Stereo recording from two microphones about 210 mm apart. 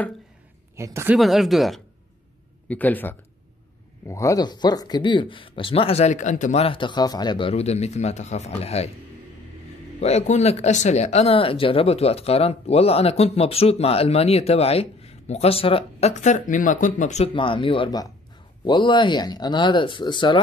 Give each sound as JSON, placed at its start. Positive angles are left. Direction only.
{"t": 0.7, "sound": "speech", "side_deg": -15}
{"t": 1.1, "sound": "speech", "side_deg": 0}
{"t": 9.9, "sound": "speech", "side_deg": 30}